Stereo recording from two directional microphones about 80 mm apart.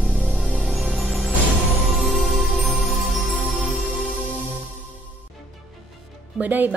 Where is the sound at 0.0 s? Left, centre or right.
Centre.